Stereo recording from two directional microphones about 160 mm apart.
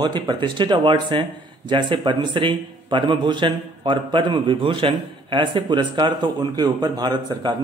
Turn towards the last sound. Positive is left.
turn(degrees=-25)  # may be behind; listen again after turning